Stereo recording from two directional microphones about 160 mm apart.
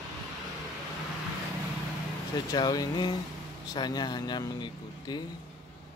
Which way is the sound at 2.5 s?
25° left (ahead or behind).